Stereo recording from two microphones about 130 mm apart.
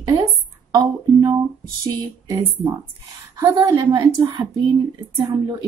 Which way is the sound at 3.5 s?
35° right (ahead or behind).